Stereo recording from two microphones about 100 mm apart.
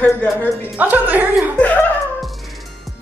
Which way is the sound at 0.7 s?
15° right (ahead or behind).